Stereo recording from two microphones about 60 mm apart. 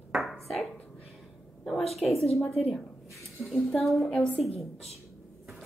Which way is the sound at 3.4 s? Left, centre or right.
Centre.